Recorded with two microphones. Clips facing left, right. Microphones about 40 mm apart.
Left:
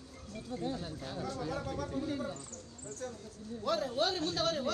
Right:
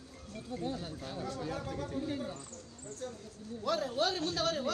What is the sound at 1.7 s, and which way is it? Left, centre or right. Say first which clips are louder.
Speech: left 1 dB; right.